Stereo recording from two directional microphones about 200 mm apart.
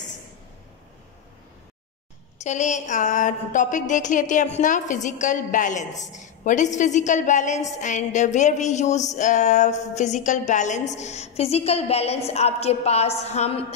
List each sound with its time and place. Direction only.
2.4 s a woman's voice: 35° left (ahead or behind)